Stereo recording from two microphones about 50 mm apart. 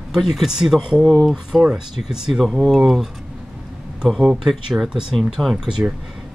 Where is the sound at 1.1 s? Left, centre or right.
Centre.